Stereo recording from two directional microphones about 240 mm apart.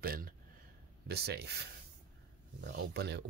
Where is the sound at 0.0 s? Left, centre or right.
Right.